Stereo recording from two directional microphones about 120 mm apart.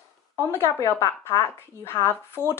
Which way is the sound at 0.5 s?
20° left (ahead or behind).